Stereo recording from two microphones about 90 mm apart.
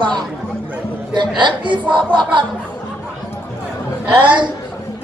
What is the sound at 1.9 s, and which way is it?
Speech, 65° right (ahead or behind).